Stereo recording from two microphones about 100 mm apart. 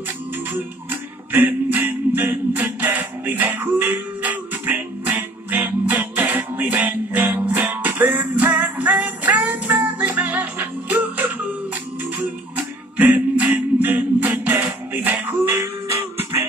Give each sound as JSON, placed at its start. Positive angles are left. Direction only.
{"t": 1.3, "sound": "music", "side_deg": -20}
{"t": 12.5, "sound": "music", "side_deg": -15}